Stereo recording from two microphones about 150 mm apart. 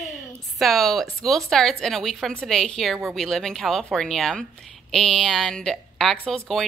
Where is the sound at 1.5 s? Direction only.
Centre (ahead or behind).